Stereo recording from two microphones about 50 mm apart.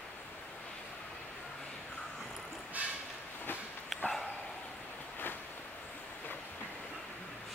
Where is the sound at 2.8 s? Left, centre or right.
Right.